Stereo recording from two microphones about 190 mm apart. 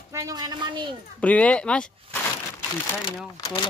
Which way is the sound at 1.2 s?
5° left (ahead or behind).